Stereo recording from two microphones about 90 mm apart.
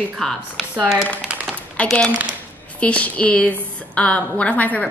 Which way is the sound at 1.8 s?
15° left (ahead or behind).